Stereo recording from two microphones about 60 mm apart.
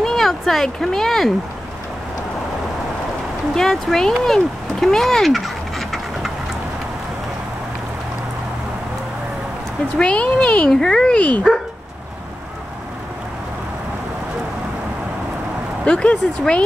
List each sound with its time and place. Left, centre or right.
0.0 s speech: centre
3.5 s speech: centre
9.9 s speech: centre
11.1 s speech: left
15.8 s speech: centre